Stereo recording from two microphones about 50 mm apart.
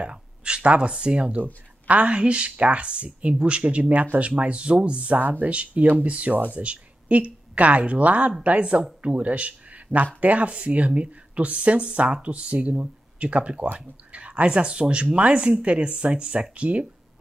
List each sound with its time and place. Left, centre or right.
0.0 s speech: centre